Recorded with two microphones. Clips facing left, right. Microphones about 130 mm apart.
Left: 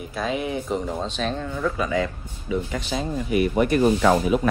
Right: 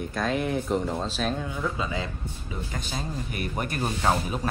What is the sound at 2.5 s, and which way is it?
Speech, 35° right (ahead or behind).